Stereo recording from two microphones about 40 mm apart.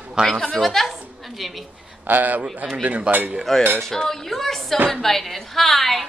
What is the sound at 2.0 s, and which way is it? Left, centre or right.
Speech, right.